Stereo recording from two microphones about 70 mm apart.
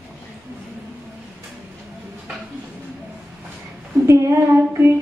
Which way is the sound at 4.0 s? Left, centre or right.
Right.